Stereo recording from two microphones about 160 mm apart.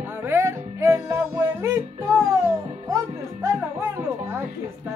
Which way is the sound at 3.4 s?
15° right (ahead or behind).